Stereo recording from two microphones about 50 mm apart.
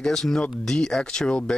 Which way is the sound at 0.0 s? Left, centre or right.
Centre.